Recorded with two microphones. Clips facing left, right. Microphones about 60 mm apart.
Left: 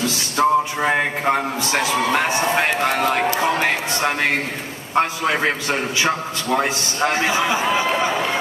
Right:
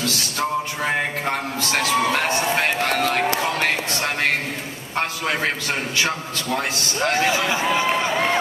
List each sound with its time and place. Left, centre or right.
0.4 s music: left
1.2 s a man's voice: centre
4.9 s a man's voice: centre